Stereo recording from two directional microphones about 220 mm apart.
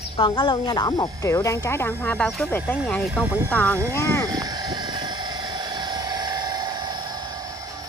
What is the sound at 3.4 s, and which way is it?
Speech, 5° left (ahead or behind).